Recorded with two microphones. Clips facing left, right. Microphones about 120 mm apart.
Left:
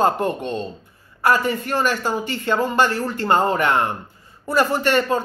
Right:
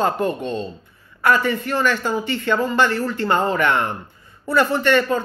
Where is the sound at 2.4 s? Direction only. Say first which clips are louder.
Even; 45° left (ahead or behind).